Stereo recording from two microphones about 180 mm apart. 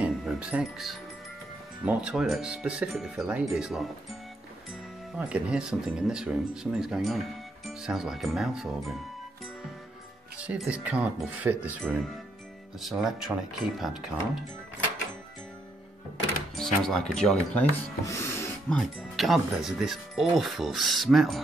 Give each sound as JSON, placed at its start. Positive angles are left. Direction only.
{"t": 0.0, "sound": "music", "side_deg": -5}
{"t": 1.9, "sound": "speech", "side_deg": -5}
{"t": 10.3, "sound": "speech", "side_deg": -5}
{"t": 16.5, "sound": "speech", "side_deg": 0}
{"t": 18.0, "sound": "music", "side_deg": 15}
{"t": 18.7, "sound": "speech", "side_deg": 0}